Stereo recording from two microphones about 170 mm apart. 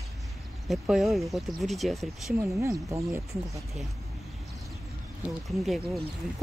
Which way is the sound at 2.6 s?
20° right (ahead or behind).